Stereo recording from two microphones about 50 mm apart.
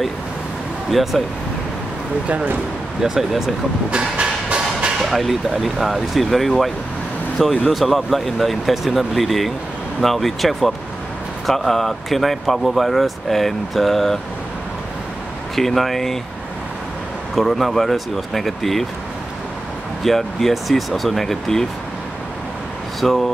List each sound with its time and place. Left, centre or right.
0.8 s speech: centre
2.2 s speech: right
3.0 s speech: centre
3.9 s train: centre
4.9 s speech: centre
15.5 s speech: centre
17.4 s speech: centre
20.0 s speech: centre
22.9 s speech: centre